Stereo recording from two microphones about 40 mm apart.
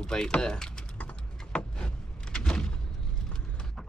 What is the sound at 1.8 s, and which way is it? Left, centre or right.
Power windows, centre.